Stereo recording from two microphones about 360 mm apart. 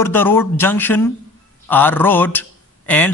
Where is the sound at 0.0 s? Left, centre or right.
Centre.